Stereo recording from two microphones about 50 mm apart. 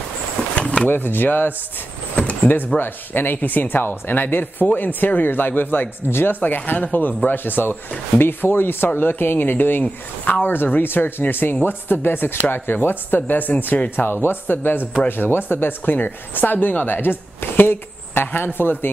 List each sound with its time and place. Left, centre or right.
0.6 s drawer open or close: left
0.8 s a woman's voice: left
6.4 s a woman's voice: left